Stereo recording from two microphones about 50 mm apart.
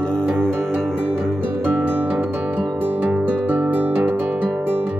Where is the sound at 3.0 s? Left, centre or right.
Right.